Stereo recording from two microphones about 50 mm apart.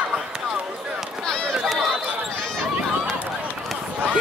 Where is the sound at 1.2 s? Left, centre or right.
Centre.